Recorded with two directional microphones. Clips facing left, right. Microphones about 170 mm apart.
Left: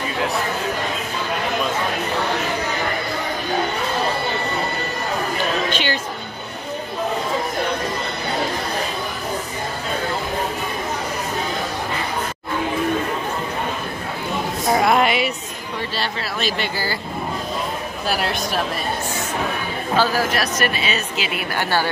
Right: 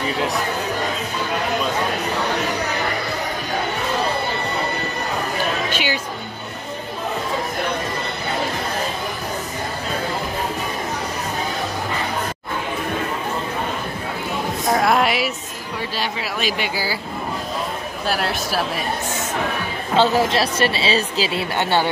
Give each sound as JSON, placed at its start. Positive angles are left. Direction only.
{"t": 5.7, "sound": "music", "side_deg": -10}
{"t": 14.7, "sound": "a sound", "side_deg": 0}
{"t": 16.0, "sound": "speech", "side_deg": -10}
{"t": 18.0, "sound": "speech", "side_deg": 0}
{"t": 20.0, "sound": "speech", "side_deg": -25}